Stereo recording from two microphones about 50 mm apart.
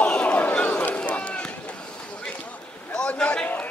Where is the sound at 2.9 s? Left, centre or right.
Centre.